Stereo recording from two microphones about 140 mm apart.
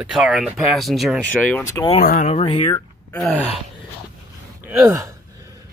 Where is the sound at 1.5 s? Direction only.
20° left (ahead or behind).